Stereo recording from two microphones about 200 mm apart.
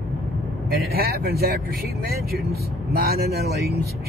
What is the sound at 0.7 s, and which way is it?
Speech, 50° right (ahead or behind).